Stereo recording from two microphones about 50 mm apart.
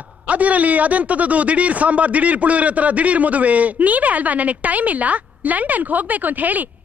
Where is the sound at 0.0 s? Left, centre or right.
Right.